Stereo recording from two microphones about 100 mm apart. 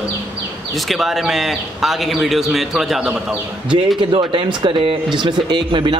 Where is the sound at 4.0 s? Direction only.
55° right (ahead or behind).